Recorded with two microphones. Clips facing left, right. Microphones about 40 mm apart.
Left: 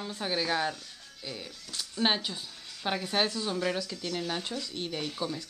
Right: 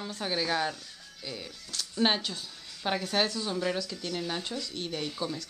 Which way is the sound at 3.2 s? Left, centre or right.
Centre.